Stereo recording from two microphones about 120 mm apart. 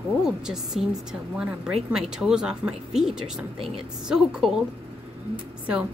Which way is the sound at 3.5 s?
55° right (ahead or behind).